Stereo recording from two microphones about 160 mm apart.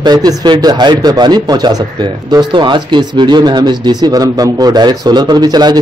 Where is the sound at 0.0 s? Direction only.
25° right (ahead or behind).